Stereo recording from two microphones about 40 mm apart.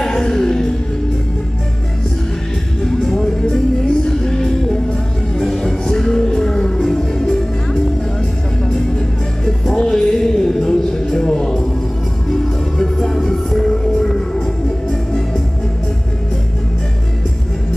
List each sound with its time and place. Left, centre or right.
0.0 s music: centre
2.9 s music: centre